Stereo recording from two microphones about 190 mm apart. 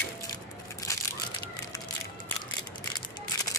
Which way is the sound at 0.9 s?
15° left (ahead or behind).